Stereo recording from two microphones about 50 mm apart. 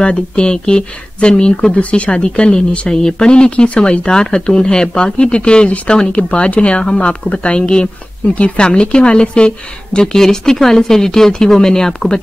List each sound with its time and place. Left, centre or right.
0.0 s speech: centre